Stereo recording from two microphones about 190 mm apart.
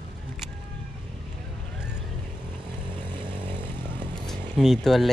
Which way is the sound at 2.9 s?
25° right (ahead or behind).